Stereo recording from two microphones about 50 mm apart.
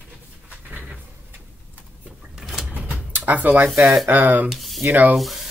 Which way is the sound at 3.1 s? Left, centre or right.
Right.